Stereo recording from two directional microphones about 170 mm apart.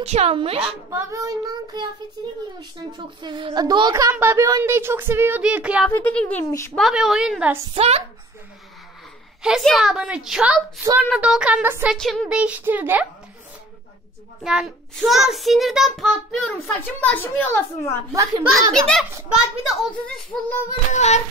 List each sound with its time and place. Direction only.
0.0 s speech: 40° right (ahead or behind)
0.8 s child singing: 15° right (ahead or behind)
3.0 s a woman's voice: 25° right (ahead or behind); by 5.9 s 5° right (ahead or behind)
5.9 s a child's voice: 10° left (ahead or behind)
6.8 s a child's voice: centre (ahead or behind)
7.7 s speech: 35° right (ahead or behind)
9.4 s a child's voice: centre (ahead or behind)
11.9 s a woman's voice: centre (ahead or behind)
14.4 s a child's voice: 5° right (ahead or behind); by 18.0 s 15° left (ahead or behind)
18.1 s child singing: 20° right (ahead or behind)
18.7 s a child's voice: centre (ahead or behind)
20.9 s a sound: 40° left (ahead or behind)